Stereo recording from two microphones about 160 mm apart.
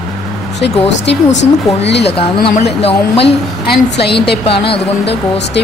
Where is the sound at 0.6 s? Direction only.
90° left.